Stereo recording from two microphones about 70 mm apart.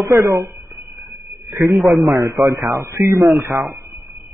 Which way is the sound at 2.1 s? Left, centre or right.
Right.